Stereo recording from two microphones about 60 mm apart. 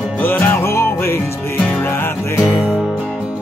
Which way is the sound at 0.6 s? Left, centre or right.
Left.